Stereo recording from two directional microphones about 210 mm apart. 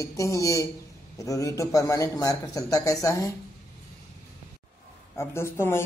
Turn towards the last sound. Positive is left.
turn(degrees=10)  # may be behind; listen again after turning